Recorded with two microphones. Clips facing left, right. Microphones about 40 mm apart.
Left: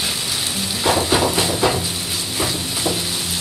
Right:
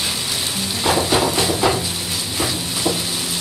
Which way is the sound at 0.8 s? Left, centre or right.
Centre.